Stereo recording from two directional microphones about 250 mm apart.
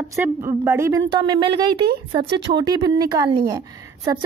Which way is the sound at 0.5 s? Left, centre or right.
Centre.